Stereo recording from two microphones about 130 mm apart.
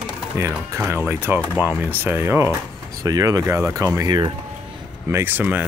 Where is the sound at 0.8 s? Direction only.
15° right (ahead or behind).